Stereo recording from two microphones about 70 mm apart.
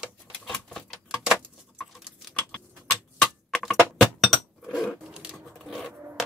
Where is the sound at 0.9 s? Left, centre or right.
Centre.